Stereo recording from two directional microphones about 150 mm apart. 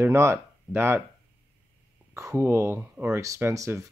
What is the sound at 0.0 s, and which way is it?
Speech, 20° right (ahead or behind).